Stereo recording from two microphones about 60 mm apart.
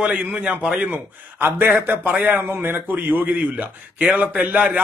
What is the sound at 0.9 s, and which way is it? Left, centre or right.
A man's voice, right.